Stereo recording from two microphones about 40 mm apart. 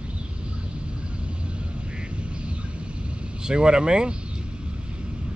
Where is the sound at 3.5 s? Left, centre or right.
Right.